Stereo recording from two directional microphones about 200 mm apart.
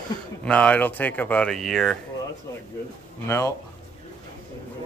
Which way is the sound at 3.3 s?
15° left (ahead or behind).